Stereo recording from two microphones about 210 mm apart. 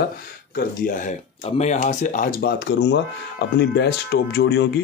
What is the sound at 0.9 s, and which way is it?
Speech, 35° left (ahead or behind).